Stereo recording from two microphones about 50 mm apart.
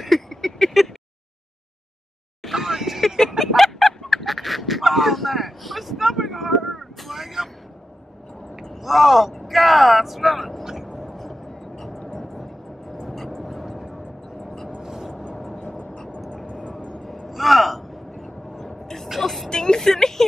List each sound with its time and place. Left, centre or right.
0.0 s a sound: centre
2.5 s vehicle: centre
3.2 s fowl: centre
8.7 s speech: centre
10.9 s vehicle: centre
11.1 s vehicle: centre
14.8 s music: centre
15.3 s vehicle: centre
15.7 s vehicle: left
16.8 s a sound: centre
17.3 s a sound: centre
19.0 s vehicle: centre
19.5 s a sound: centre